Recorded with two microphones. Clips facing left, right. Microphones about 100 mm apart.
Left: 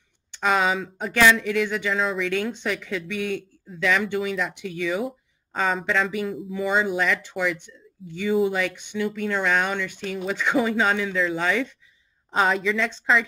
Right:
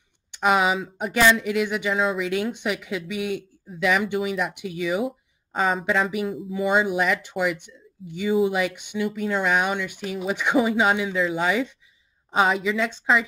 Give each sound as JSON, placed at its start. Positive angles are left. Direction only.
{"t": 0.3, "sound": "speech", "side_deg": -15}